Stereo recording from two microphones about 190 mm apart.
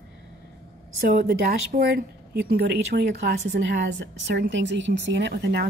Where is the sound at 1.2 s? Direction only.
50° right (ahead or behind).